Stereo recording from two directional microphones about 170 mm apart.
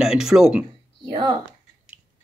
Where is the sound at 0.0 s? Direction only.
5° right (ahead or behind).